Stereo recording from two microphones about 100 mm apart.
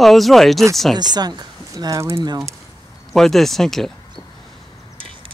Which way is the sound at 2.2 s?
45° right (ahead or behind).